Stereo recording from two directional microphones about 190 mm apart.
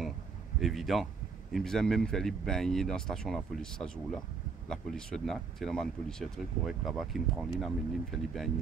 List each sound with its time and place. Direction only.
0.6 s speech: centre (ahead or behind)